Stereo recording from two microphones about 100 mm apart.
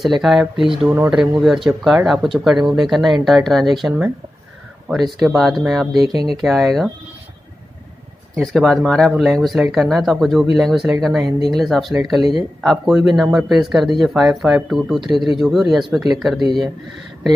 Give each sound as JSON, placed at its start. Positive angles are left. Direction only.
{"t": 0.0, "sound": "speech", "side_deg": 0}
{"t": 0.8, "sound": "speech", "side_deg": -20}
{"t": 1.1, "sound": "speech", "side_deg": -5}
{"t": 8.4, "sound": "speech", "side_deg": 0}